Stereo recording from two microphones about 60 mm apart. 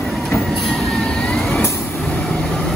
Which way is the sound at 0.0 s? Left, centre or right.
Centre.